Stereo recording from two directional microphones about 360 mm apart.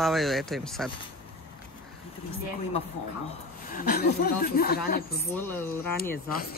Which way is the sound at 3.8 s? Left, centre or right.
Left.